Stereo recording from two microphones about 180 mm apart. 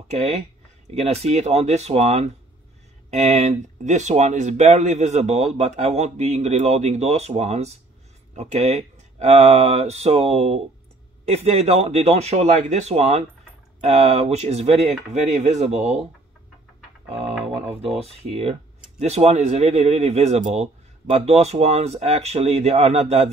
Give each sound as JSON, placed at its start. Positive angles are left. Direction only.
{"t": 0.1, "sound": "speech", "side_deg": -35}
{"t": 17.6, "sound": "speech", "side_deg": -35}